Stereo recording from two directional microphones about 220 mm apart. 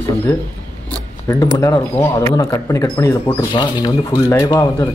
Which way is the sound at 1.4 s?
15° left (ahead or behind).